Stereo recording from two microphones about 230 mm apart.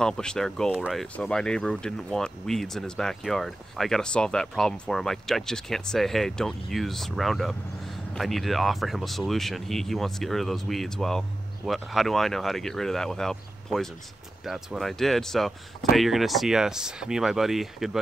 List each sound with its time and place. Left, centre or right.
0.0 s speech: centre